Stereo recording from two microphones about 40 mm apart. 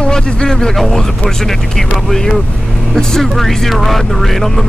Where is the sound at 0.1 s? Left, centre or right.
Left.